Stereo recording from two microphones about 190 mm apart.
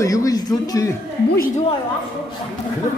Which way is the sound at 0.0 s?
20° left (ahead or behind).